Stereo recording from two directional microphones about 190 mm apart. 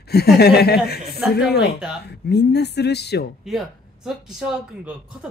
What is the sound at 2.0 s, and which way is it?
A woman's voice, 60° left (ahead or behind).